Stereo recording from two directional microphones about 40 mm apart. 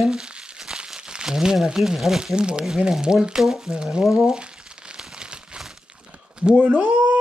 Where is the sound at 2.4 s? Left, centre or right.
Right.